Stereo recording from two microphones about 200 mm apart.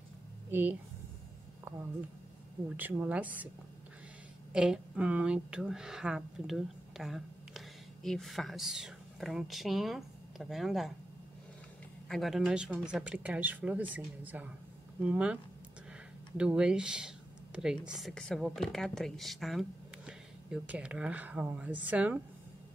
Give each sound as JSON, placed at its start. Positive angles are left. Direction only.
{"t": 0.5, "sound": "speech", "side_deg": -10}
{"t": 2.8, "sound": "a woman's voice", "side_deg": -10}
{"t": 4.5, "sound": "speech", "side_deg": -5}
{"t": 12.1, "sound": "a woman's voice", "side_deg": 0}
{"t": 16.3, "sound": "a woman's voice", "side_deg": -5}